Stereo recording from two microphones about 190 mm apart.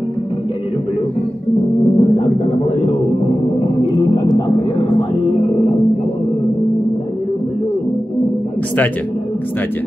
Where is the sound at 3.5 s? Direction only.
25° left (ahead or behind).